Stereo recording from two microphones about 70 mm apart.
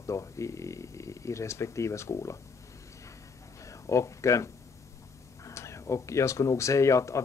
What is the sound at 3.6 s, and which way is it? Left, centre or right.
Speech, left.